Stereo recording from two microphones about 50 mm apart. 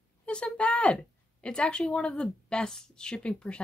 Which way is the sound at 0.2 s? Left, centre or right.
Left.